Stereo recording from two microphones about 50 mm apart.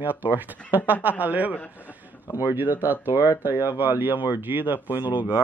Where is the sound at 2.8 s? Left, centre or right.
Right.